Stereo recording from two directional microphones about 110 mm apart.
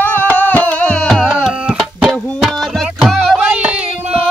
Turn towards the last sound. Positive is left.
turn(degrees=0)  # may be behind; listen again after turning